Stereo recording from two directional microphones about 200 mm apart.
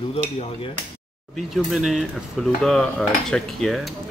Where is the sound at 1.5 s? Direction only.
Centre (ahead or behind).